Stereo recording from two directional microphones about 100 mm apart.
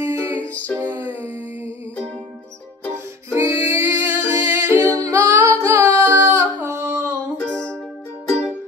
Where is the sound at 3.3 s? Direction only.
25° right (ahead or behind).